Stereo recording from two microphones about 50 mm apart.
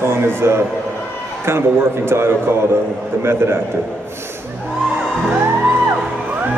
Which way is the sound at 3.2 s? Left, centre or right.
Right.